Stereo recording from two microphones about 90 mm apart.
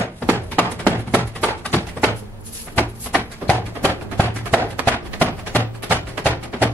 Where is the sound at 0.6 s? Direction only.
25° left (ahead or behind).